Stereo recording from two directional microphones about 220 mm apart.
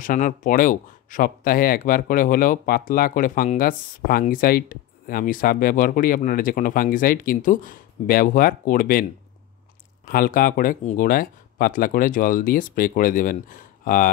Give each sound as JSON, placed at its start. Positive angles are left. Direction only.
{"t": 0.0, "sound": "speech", "side_deg": 35}
{"t": 10.0, "sound": "speech", "side_deg": 40}